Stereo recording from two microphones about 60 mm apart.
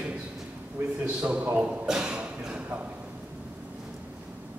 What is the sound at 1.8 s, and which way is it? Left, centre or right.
Speech, centre.